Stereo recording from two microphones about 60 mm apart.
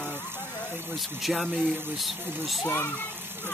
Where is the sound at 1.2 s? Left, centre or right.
Centre.